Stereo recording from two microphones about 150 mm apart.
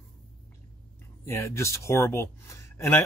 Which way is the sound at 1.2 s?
20° left (ahead or behind).